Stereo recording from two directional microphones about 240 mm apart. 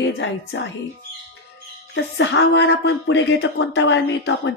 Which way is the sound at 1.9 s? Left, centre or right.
Left.